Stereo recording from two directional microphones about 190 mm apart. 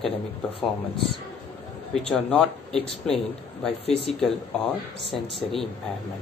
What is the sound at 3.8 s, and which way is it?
Speech, 30° left (ahead or behind).